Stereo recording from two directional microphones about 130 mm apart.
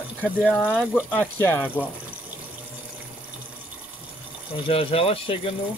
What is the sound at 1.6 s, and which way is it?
Speech, 10° right (ahead or behind).